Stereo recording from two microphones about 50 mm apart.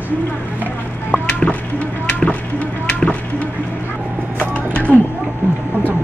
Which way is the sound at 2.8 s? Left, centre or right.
Left.